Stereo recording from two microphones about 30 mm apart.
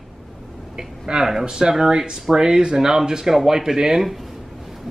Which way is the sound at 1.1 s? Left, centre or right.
Right.